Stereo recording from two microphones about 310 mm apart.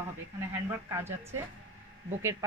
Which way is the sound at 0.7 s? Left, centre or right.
Centre.